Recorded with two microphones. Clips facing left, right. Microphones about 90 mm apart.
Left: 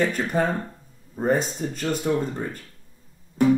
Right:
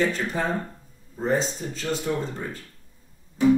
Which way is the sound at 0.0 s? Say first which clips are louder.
Left 2 dB; 55° left (ahead or behind).